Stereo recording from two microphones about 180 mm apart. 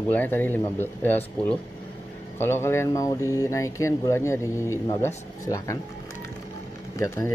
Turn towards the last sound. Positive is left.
turn(degrees=15)  # may be behind; listen again after turning